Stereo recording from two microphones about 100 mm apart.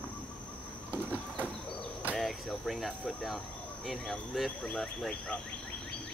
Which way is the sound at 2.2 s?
Centre (ahead or behind).